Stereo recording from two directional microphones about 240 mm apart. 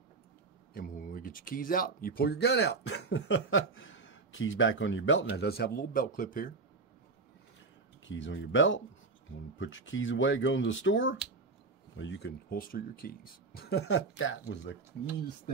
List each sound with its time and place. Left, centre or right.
0.7 s speech: left
8.0 s speech: left
13.8 s speech: left